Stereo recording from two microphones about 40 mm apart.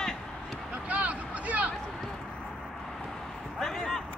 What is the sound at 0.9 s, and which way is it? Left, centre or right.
Vehicle, right.